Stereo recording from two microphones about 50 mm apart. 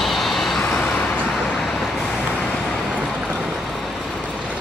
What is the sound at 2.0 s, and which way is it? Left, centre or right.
Vehicle, left.